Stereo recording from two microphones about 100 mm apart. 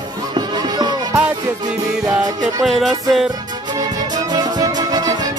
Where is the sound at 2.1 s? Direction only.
40° right (ahead or behind).